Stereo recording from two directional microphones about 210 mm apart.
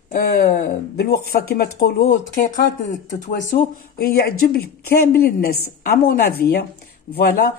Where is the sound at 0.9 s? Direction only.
50° left (ahead or behind).